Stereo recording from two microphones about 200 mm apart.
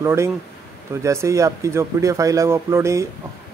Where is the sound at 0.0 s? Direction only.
15° right (ahead or behind).